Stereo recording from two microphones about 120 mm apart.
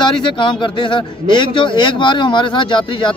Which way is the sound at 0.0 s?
40° left (ahead or behind).